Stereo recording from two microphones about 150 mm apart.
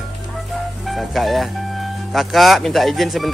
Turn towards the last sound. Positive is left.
turn(degrees=0)  # may be behind; listen again after turning